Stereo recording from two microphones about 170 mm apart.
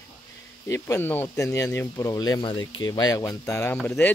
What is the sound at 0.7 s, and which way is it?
Speech, 15° left (ahead or behind).